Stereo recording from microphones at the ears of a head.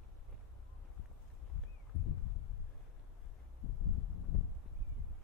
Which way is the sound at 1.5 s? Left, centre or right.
Left.